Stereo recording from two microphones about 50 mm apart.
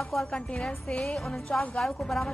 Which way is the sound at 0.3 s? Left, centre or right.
Left.